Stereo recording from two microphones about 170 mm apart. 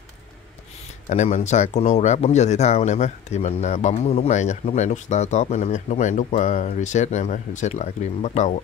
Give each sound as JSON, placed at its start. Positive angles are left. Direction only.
{"t": 1.0, "sound": "speech", "side_deg": 40}